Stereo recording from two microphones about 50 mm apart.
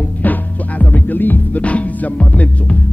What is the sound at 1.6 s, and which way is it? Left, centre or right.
Music, left.